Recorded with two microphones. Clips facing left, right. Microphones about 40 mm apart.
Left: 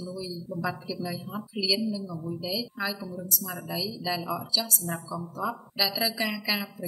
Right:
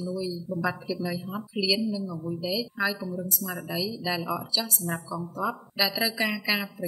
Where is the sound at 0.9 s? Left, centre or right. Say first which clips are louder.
Right 3 dB; right.